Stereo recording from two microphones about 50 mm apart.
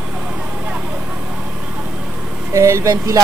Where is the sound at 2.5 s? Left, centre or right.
Right.